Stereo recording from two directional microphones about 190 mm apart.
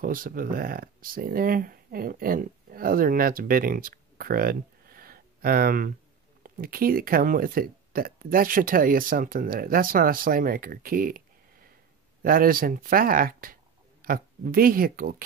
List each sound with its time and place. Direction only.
0.0 s speech: 45° right (ahead or behind)